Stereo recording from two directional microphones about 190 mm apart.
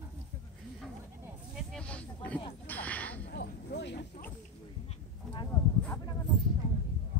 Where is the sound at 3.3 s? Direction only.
65° left (ahead or behind).